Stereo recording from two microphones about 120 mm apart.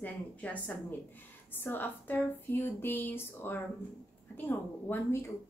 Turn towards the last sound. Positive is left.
turn(degrees=20)  # may be behind; listen again after turning